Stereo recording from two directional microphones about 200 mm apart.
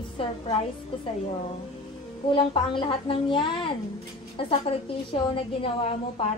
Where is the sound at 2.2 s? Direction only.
25° left (ahead or behind).